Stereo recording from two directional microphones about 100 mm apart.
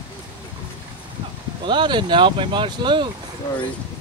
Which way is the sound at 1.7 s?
50° right (ahead or behind).